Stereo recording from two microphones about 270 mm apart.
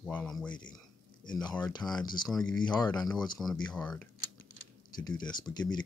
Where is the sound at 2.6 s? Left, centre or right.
Centre.